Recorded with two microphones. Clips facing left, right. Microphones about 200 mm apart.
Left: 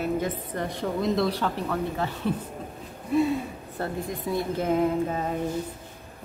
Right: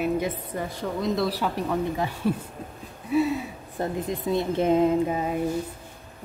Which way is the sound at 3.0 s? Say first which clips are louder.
Even; 5° right (ahead or behind).